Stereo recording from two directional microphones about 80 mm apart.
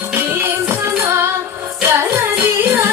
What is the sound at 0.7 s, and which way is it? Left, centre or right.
Music, right.